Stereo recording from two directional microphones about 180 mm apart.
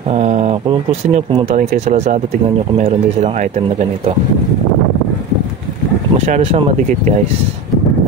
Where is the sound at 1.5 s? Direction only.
40° right (ahead or behind).